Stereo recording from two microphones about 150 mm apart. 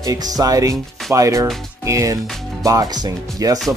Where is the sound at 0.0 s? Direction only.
25° right (ahead or behind).